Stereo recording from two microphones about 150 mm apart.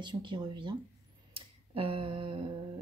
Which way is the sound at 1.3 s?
40° right (ahead or behind).